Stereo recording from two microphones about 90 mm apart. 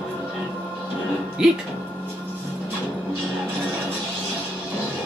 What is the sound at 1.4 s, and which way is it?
Speech, 5° right (ahead or behind).